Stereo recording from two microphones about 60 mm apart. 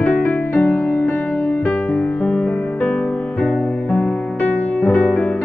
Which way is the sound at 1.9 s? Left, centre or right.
Left.